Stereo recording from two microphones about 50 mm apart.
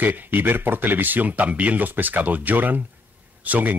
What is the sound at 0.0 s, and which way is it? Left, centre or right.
Speech, right.